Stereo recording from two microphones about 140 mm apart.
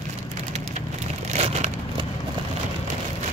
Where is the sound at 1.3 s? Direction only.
55° right (ahead or behind).